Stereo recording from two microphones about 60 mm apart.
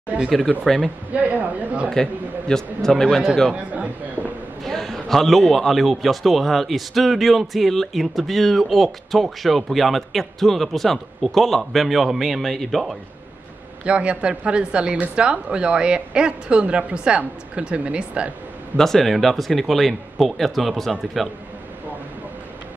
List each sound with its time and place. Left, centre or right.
0.1 s a woman's voice: right
1.9 s a man's voice: centre
3.7 s a man's voice: right
4.6 s a man's voice: centre
13.8 s a woman's voice: centre
18.8 s a man's voice: centre